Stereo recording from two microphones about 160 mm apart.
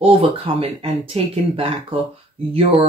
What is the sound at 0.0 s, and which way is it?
Speech, 35° right (ahead or behind).